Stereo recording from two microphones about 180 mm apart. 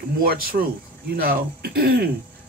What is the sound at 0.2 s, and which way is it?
Speech, 55° right (ahead or behind).